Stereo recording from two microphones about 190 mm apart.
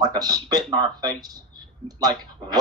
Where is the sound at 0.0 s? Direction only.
20° right (ahead or behind).